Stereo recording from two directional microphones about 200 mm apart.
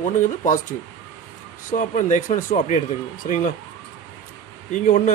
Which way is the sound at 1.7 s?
40° left (ahead or behind).